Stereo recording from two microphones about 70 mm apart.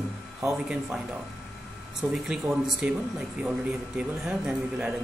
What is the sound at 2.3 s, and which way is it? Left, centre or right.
Speech, centre.